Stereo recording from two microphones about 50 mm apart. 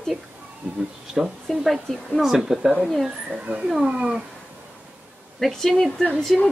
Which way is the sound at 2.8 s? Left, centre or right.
Centre.